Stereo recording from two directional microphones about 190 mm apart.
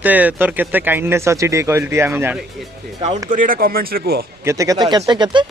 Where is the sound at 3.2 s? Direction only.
45° right (ahead or behind).